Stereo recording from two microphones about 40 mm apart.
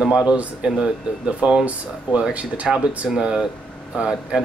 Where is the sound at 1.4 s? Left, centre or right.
Right.